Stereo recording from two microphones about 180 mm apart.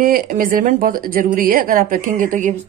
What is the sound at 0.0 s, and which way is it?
A woman's voice, 50° right (ahead or behind).